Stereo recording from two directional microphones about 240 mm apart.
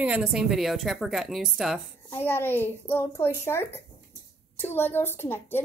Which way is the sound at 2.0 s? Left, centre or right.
Centre.